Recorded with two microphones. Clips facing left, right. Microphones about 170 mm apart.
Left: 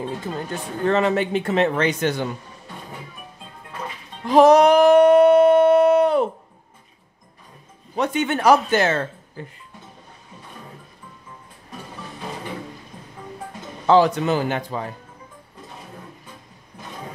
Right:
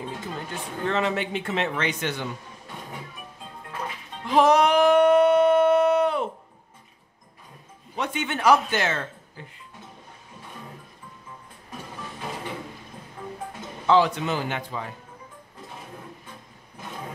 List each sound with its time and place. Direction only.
0.8 s speech: 40° left (ahead or behind)
4.3 s a sound: 40° left (ahead or behind)
7.9 s speech: 40° left (ahead or behind)
13.8 s speech: 40° left (ahead or behind)